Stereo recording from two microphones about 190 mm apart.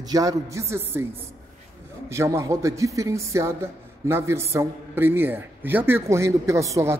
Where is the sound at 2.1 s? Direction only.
15° right (ahead or behind).